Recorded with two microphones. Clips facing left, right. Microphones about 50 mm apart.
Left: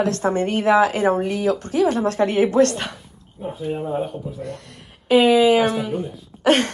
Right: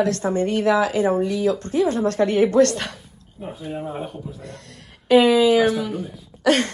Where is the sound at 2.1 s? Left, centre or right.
Centre.